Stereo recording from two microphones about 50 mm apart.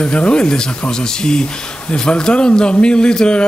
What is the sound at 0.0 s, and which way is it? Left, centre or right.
A man's voice, left.